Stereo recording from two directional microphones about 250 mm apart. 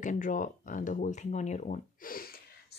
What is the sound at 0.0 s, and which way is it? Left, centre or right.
Speech, left.